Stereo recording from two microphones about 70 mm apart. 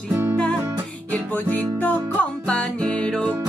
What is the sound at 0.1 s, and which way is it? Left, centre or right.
Music, right.